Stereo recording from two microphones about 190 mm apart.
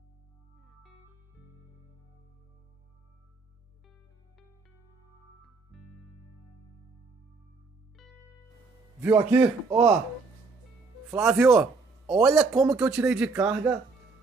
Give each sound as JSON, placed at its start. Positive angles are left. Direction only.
{"t": 5.7, "sound": "music", "side_deg": 0}
{"t": 9.1, "sound": "a man's voice", "side_deg": -20}
{"t": 11.1, "sound": "a man's voice", "side_deg": -5}
{"t": 13.3, "sound": "speech", "side_deg": -15}